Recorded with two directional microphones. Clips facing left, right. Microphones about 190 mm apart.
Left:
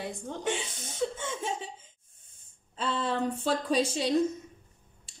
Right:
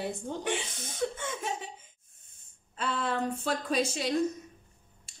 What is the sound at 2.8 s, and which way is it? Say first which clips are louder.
Speech: left 1 dB; 30° left (ahead or behind).